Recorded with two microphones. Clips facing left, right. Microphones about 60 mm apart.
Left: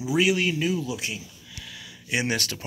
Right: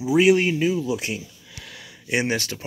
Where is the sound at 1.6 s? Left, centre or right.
Right.